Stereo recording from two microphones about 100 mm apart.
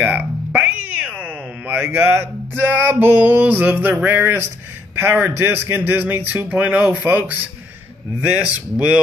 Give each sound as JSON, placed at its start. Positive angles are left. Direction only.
{"t": 0.0, "sound": "cat", "side_deg": -15}
{"t": 1.7, "sound": "a sound", "side_deg": -25}
{"t": 8.3, "sound": "speech", "side_deg": -15}